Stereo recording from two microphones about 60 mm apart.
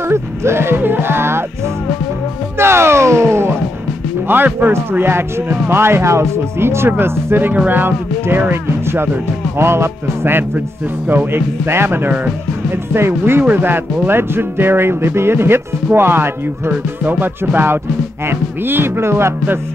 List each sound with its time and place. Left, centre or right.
0.1 s speech: right
2.6 s a sound: right
4.3 s speech: right
16.7 s speech: right